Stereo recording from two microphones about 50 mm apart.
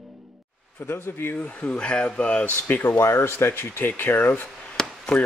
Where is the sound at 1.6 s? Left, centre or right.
Centre.